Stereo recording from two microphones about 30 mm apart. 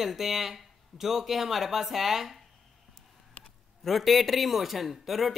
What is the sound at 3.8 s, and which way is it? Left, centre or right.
Speech, centre.